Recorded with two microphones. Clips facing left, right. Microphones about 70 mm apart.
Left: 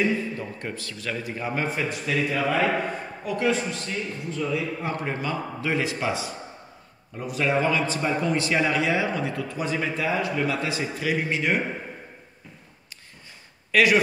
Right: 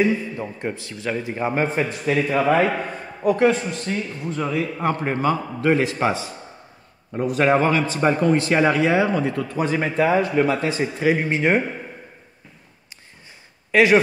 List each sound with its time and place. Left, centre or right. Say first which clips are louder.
0.0 s a man's voice: right 4 dB; right
13.7 s speech: right 4 dB; right